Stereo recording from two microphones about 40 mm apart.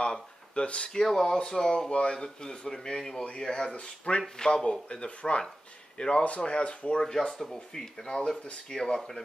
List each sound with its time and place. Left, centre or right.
0.0 s speech: left
1.0 s speech: centre
3.7 s speech: left
4.4 s speech: centre
4.8 s a man's voice: left
7.2 s speech: centre
8.1 s speech: left